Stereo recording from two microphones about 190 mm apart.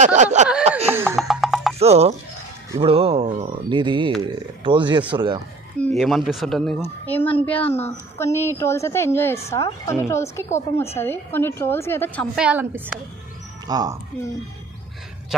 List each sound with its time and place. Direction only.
0.0 s a sound: 40° right (ahead or behind)
0.7 s laughter: 35° right (ahead or behind)
1.1 s music: centre (ahead or behind)
1.8 s speech: 35° right (ahead or behind)
5.8 s a woman's voice: 5° left (ahead or behind)
7.6 s a woman's voice: 35° left (ahead or behind)
8.2 s a woman's voice: 15° left (ahead or behind)
12.4 s a woman's voice: 10° right (ahead or behind)
13.7 s speech: 20° right (ahead or behind)